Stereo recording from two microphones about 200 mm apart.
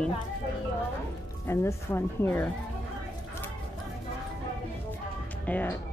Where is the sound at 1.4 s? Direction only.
10° left (ahead or behind).